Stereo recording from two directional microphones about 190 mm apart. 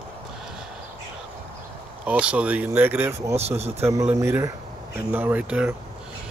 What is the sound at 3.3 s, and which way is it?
Speech, 35° right (ahead or behind).